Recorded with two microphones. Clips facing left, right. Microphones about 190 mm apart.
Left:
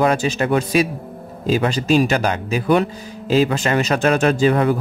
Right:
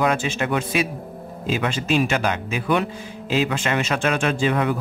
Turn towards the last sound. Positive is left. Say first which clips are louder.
# left 5 dB
turn(degrees=35)  # may be behind; listen again after turning